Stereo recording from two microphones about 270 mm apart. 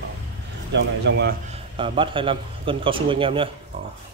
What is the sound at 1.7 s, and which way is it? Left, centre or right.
A man's voice, centre.